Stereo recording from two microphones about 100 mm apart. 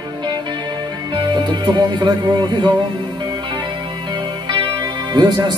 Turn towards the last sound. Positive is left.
turn(degrees=-45)  # may be behind; listen again after turning